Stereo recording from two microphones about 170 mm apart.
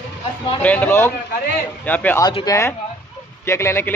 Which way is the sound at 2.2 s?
25° left (ahead or behind).